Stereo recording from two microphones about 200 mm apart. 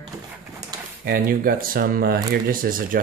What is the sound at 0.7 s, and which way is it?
Pigeon, 20° right (ahead or behind).